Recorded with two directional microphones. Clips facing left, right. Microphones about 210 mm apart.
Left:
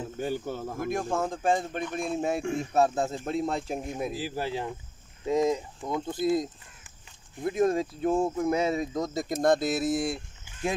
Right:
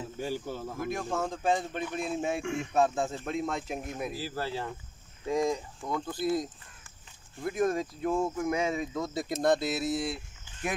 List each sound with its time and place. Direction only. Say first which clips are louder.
0.2 s speech: left 3 dB; 50° left (ahead or behind); by 3.9 s 35° left (ahead or behind)
3.9 s speech: left 3 dB; 20° left (ahead or behind); by 10.2 s 50° left (ahead or behind)